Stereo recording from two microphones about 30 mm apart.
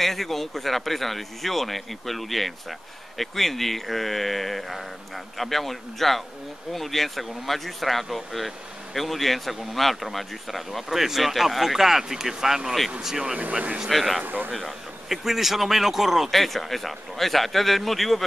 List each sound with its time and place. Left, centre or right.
0.0 s speech: centre
10.9 s speech: centre
13.8 s speech: centre
14.2 s speech: right
15.0 s speech: centre
16.3 s speech: centre